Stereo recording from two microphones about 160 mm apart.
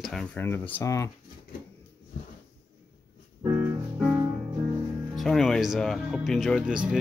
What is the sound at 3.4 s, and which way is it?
Music, 10° right (ahead or behind).